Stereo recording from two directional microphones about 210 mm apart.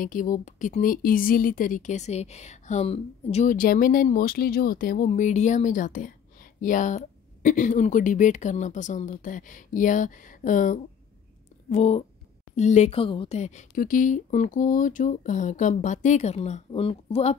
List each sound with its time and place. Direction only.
0.0 s speech: 40° left (ahead or behind)